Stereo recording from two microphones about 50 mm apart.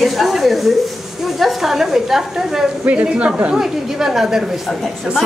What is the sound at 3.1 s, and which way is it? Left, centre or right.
Speech, right.